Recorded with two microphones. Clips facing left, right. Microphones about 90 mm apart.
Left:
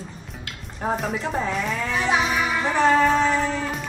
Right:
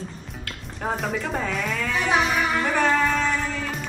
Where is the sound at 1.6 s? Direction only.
35° left (ahead or behind).